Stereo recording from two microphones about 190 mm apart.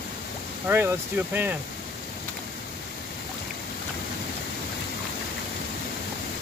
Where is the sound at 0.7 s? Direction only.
10° right (ahead or behind).